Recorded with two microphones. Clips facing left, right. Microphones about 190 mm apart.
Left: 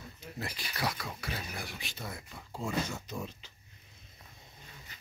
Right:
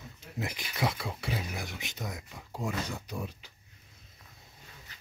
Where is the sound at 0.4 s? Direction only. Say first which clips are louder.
Right 4 dB; 20° right (ahead or behind).